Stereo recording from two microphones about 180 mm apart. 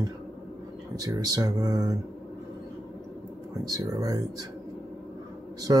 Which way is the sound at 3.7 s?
20° right (ahead or behind).